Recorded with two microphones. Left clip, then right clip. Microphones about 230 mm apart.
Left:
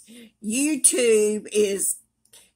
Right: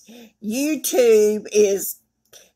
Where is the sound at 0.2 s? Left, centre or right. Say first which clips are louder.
Right 1 dB; centre.